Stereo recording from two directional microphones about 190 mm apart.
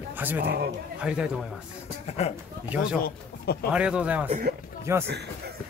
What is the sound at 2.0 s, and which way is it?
Speech, 35° left (ahead or behind).